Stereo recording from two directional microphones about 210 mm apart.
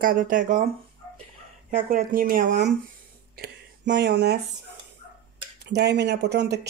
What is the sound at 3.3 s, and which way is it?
Speech, 55° right (ahead or behind).